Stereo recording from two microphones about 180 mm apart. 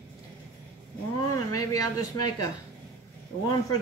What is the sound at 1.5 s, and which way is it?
Speech, 20° left (ahead or behind).